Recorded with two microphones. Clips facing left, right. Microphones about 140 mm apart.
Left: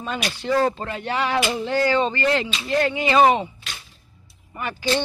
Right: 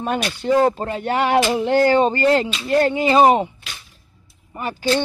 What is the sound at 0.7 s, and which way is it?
Speech, 40° right (ahead or behind).